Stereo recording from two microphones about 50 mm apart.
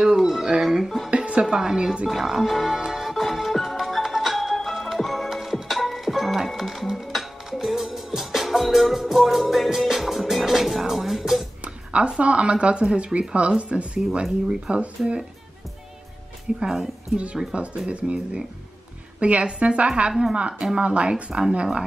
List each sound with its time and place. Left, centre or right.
0.0 s music: centre
1.1 s a sound: right
1.4 s a woman's voice: centre
2.9 s music: centre
11.6 s speech: right
16.5 s a woman's voice: centre
17.6 s speech: right
20.1 s a woman's voice: centre
20.3 s speech: right